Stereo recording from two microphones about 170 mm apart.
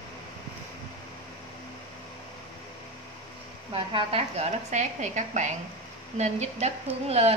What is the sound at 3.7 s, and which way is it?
A woman's voice, 35° right (ahead or behind).